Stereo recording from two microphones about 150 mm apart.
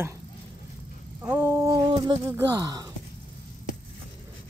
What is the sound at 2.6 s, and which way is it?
Speech, 25° right (ahead or behind).